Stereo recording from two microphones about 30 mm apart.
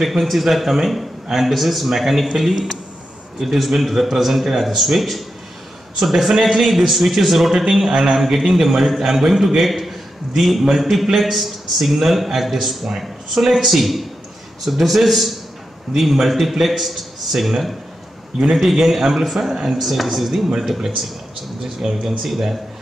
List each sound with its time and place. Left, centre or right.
0.0 s a man's voice: centre
3.9 s a man's voice: centre